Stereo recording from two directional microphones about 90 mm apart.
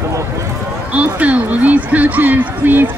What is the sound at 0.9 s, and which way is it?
Speech, 15° right (ahead or behind).